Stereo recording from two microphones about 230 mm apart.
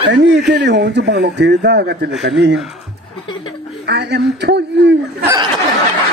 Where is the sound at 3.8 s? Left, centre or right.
Right.